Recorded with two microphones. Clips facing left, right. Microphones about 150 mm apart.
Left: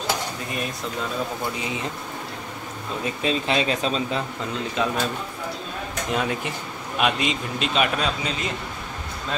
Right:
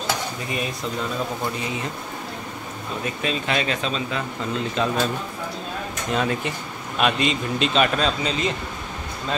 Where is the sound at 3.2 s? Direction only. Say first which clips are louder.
Left 2 dB; 30° left (ahead or behind).